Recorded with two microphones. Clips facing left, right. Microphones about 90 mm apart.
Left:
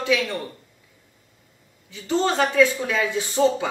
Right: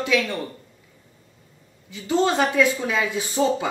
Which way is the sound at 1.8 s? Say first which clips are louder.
Right 1 dB; 10° right (ahead or behind).